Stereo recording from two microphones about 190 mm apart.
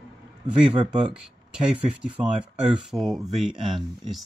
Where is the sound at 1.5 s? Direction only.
5° right (ahead or behind).